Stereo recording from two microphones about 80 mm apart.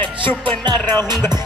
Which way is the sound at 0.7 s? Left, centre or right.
Right.